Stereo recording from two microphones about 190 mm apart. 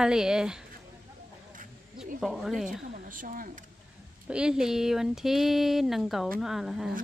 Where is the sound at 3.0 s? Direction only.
45° right (ahead or behind).